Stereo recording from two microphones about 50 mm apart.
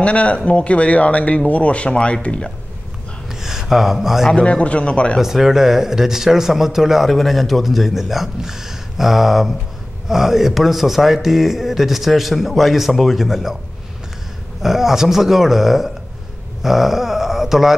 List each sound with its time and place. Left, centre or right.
0.0 s speech: left
3.3 s speech: centre
4.3 s speech: left
5.2 s speech: centre
14.6 s speech: centre
16.6 s a sound: centre